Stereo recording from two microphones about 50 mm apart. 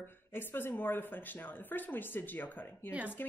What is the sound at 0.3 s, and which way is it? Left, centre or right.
Speech, left.